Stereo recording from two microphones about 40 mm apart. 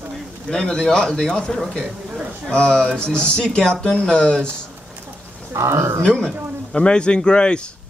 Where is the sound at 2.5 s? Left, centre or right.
Left.